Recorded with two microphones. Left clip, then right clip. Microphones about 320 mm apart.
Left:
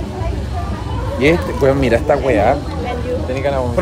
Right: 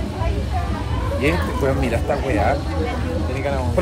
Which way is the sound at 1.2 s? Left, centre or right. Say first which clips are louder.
Left 8 dB; left.